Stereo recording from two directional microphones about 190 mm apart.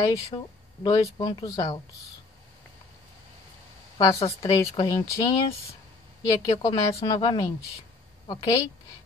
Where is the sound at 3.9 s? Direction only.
20° left (ahead or behind).